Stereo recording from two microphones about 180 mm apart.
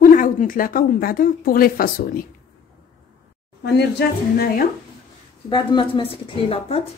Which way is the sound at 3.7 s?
60° left (ahead or behind).